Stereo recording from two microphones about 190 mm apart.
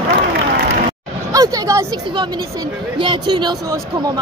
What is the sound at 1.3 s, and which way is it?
Speech, 20° right (ahead or behind).